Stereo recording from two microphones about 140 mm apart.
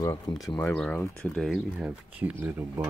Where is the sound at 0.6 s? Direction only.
10° left (ahead or behind).